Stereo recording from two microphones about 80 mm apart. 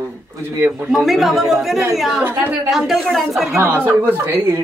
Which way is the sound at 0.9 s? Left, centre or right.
Centre.